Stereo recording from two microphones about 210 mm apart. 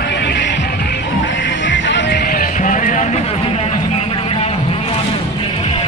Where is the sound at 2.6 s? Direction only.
35° left (ahead or behind).